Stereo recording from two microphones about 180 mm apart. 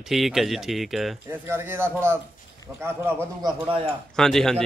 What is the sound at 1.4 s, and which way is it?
Speech, 15° right (ahead or behind).